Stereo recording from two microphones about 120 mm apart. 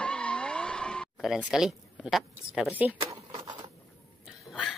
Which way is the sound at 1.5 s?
5° right (ahead or behind).